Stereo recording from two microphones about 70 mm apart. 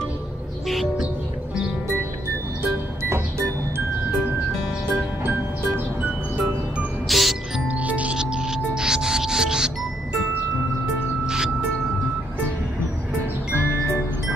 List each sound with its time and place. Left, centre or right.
0.7 s music: centre
6.0 s music: right
7.1 s music: centre
7.6 s music: right
11.2 s music: centre